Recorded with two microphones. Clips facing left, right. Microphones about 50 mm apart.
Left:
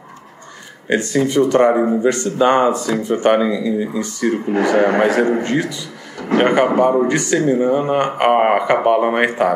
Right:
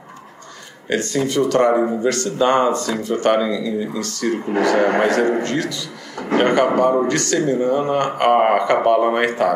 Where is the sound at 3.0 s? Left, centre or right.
Left.